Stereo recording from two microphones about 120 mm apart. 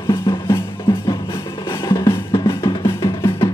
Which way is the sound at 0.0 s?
35° left (ahead or behind).